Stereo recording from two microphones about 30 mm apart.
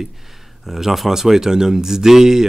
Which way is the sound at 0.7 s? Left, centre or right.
Centre.